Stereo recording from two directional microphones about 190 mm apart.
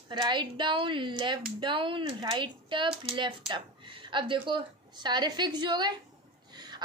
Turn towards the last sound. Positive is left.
turn(degrees=-20)  # may be behind; listen again after turning